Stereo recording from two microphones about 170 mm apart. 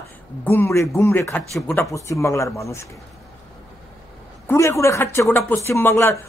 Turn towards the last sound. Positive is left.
turn(degrees=15)  # may be behind; listen again after turning